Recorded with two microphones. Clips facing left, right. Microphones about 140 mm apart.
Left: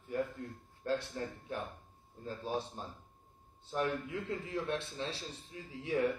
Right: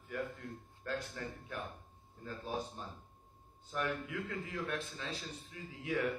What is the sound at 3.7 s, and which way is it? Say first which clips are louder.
A man's voice: left 3 dB; 30° left (ahead or behind).